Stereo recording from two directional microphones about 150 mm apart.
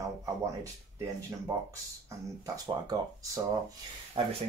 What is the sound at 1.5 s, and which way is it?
Speech, 20° right (ahead or behind).